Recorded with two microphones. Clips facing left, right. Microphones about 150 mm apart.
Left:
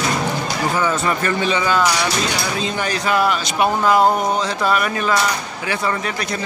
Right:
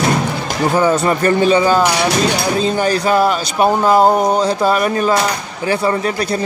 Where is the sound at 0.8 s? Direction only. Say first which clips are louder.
Right 8 dB; 35° right (ahead or behind).